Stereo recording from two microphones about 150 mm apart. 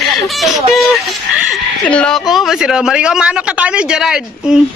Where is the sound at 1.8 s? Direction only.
5° left (ahead or behind).